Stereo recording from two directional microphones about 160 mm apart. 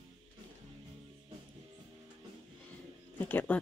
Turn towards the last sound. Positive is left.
turn(degrees=10)  # may be behind; listen again after turning